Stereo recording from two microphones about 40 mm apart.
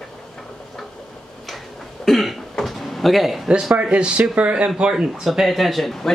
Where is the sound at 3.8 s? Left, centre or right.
Right.